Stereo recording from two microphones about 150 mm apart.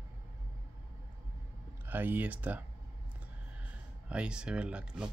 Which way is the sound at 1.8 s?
15° right (ahead or behind).